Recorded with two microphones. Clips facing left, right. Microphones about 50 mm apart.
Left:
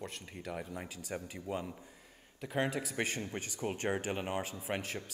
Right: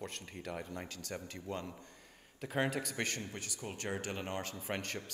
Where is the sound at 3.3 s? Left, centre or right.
Left; by 5.0 s centre.